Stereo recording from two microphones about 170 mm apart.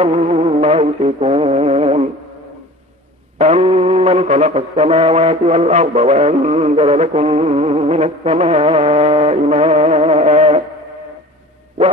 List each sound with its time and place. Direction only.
0.0 s music: 40° right (ahead or behind)
3.3 s mantra: 35° right (ahead or behind)